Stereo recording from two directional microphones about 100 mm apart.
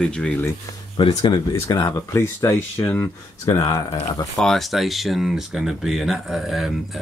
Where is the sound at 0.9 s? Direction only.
60° left (ahead or behind).